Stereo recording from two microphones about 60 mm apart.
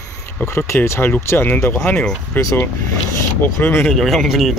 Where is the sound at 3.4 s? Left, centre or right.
Left.